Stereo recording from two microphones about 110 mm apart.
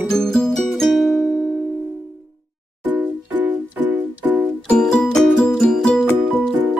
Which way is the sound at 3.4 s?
15° right (ahead or behind).